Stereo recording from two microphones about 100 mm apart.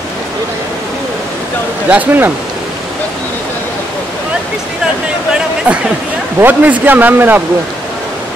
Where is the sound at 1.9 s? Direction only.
20° right (ahead or behind).